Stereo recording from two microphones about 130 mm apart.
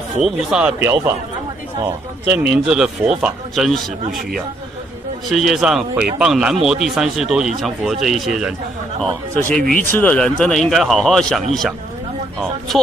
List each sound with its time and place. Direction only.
0.2 s speech: 5° right (ahead or behind)
2.2 s speech: 15° right (ahead or behind)
5.3 s speech: 5° right (ahead or behind)
9.4 s speech: 10° left (ahead or behind)